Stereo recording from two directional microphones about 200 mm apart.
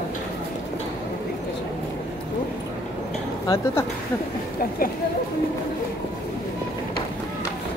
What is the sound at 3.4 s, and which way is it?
Speech, 15° left (ahead or behind).